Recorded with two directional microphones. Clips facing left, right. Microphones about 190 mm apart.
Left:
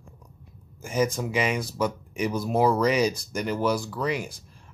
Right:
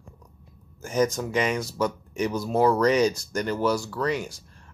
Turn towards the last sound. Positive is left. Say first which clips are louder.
# right 1 dB
turn(degrees=10)  # may be behind; listen again after turning